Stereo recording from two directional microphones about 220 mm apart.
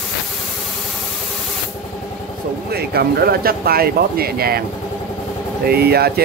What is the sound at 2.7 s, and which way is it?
Speech, 45° right (ahead or behind).